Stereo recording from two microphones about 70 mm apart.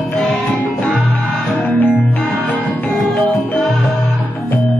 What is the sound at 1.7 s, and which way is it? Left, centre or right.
Music, left.